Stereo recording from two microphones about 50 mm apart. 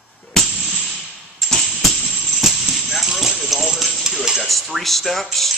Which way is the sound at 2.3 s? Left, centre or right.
Centre.